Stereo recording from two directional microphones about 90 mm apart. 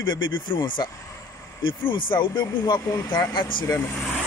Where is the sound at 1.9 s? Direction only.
65° left (ahead or behind).